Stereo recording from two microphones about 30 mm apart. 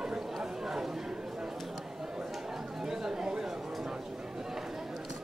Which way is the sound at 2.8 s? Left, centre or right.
Centre.